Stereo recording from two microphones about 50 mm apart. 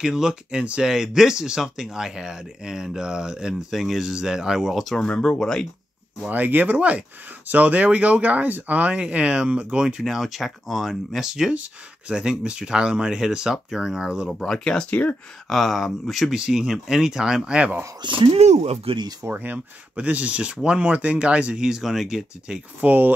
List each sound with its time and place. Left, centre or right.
0.0 s speech: centre
5.0 s speech: left
6.3 s speech: right
10.0 s speech: centre
11.5 s speech: right
14.4 s speech: centre
14.9 s speech: left
15.4 s speech: centre
16.3 s speech: centre
19.3 s speech: right
20.0 s speech: right; by 22.6 s centre
22.8 s speech: right